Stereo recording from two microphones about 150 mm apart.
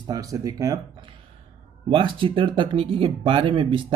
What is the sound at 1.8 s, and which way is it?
Speech, 35° right (ahead or behind).